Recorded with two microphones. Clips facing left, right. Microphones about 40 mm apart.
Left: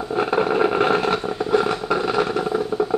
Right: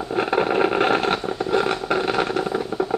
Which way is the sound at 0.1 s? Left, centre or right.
Centre.